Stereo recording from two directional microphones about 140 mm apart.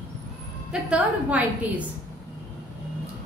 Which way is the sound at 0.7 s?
10° right (ahead or behind).